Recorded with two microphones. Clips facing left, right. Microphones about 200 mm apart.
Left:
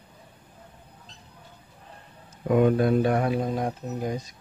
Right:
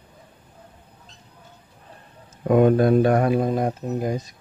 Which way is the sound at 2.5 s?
50° right (ahead or behind).